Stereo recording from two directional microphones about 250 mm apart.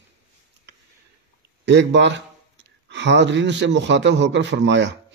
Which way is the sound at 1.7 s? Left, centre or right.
Right.